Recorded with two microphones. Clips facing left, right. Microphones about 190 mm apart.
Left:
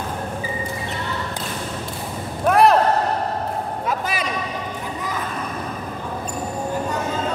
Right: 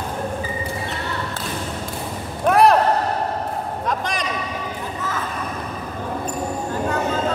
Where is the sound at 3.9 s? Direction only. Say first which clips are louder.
Even; 5° left (ahead or behind).